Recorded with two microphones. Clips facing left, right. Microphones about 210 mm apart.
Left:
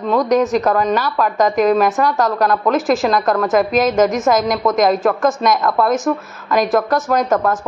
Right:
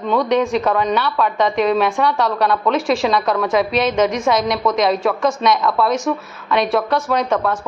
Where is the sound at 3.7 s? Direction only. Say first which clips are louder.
Left 3 dB; 45° left (ahead or behind).